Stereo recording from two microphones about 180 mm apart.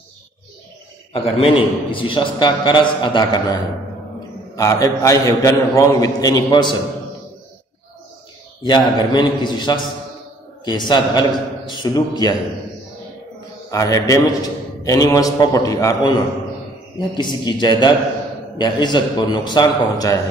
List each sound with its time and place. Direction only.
1.1 s a man's voice: 30° left (ahead or behind)
4.6 s a man's voice: 20° left (ahead or behind)
8.6 s a man's voice: 25° left (ahead or behind)
13.7 s a man's voice: 20° left (ahead or behind)